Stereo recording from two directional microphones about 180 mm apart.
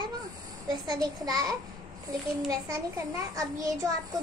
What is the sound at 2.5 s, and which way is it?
A child's voice, 20° right (ahead or behind).